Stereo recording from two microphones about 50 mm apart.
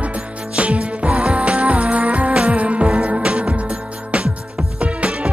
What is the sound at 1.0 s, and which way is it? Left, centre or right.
Music, centre.